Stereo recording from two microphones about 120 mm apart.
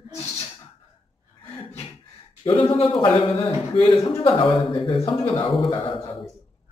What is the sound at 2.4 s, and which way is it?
A man's voice, 45° left (ahead or behind).